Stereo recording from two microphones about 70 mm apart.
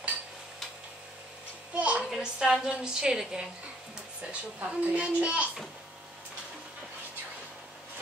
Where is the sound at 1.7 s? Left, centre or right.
Centre.